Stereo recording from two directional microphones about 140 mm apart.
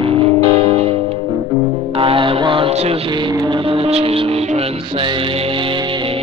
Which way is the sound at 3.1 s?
30° right (ahead or behind).